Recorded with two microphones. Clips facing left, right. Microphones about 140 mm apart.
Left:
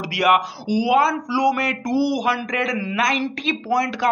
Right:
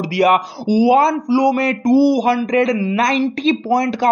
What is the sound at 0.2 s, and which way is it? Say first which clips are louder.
Speech: right 4 dB; 35° right (ahead or behind).